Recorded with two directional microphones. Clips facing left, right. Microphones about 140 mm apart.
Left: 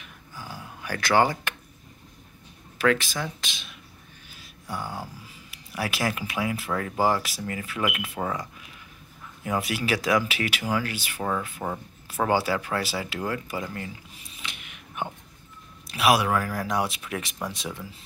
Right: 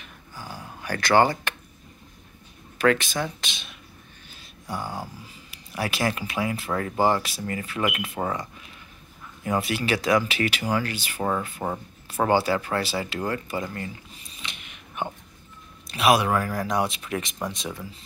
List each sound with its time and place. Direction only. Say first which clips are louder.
0.0 s a sound: right 1 dB; 5° left (ahead or behind)
0.7 s speech: right 2 dB; 5° left (ahead or behind)
2.8 s speech: right 2 dB; centre (ahead or behind)
3.2 s a sound: right 3 dB; centre (ahead or behind)
4.6 s speech: right 2 dB; 20° right (ahead or behind)
5.0 s speech: right 1 dB; 5° left (ahead or behind)
11.1 s speech: right 2 dB; 15° right (ahead or behind)
12.3 s speech: right 2 dB; 5° left (ahead or behind)
15.9 s speech: right 1 dB; 5° left (ahead or behind)